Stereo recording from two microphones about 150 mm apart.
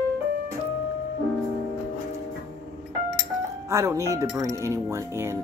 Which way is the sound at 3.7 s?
20° right (ahead or behind).